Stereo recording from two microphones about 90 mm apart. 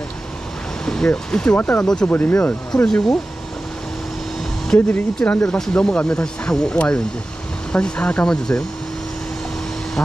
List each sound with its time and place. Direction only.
0.8 s speech: 10° left (ahead or behind)
2.0 s speech: 20° left (ahead or behind)
2.8 s speech: 10° left (ahead or behind)
4.6 s speech: 20° left (ahead or behind)